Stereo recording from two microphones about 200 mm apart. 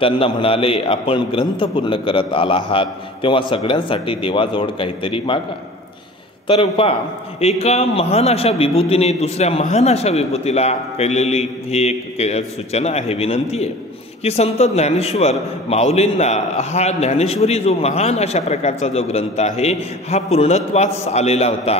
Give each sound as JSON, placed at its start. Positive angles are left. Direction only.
{"t": 0.0, "sound": "a man's voice", "side_deg": 25}
{"t": 6.4, "sound": "a man's voice", "side_deg": 25}